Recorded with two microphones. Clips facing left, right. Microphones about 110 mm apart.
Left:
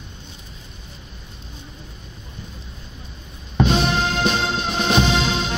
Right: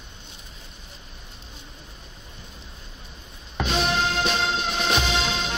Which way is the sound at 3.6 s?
30° left (ahead or behind).